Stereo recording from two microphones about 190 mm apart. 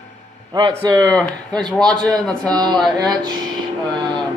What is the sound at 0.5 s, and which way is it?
Speech, 20° right (ahead or behind).